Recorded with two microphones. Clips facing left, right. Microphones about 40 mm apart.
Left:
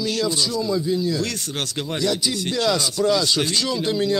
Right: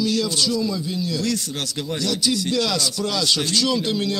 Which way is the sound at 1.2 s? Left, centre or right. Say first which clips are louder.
Right 1 dB; left.